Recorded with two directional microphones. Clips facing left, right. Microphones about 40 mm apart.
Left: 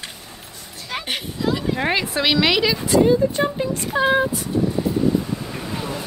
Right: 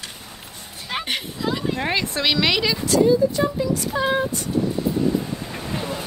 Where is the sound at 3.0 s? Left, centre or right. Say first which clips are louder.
Right 3 dB; left.